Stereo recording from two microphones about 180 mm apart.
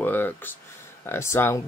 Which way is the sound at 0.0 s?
10° left (ahead or behind).